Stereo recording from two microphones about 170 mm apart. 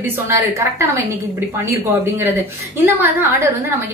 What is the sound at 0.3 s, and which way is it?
Speech, 15° right (ahead or behind).